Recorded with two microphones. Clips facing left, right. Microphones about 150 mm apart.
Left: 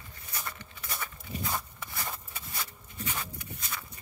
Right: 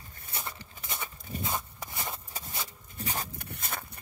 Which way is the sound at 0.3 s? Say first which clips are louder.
Right 1 dB; 25° right (ahead or behind).